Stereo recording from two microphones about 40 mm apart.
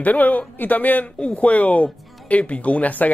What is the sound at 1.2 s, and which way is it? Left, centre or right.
Speech, left.